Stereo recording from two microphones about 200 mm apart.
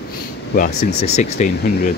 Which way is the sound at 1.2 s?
40° left (ahead or behind).